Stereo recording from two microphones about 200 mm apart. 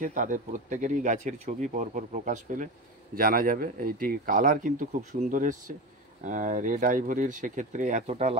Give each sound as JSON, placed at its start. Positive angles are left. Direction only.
{"t": 0.0, "sound": "speech", "side_deg": -40}